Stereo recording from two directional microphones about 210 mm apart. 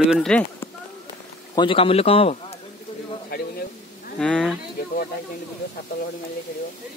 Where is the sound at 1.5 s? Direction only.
25° left (ahead or behind).